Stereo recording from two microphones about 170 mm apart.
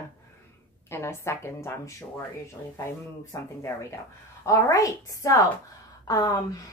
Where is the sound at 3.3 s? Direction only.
15° left (ahead or behind).